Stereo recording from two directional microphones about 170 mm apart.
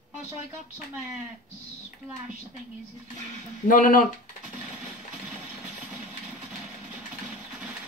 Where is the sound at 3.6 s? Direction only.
50° left (ahead or behind).